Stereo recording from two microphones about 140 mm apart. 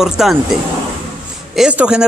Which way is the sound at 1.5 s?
5° right (ahead or behind).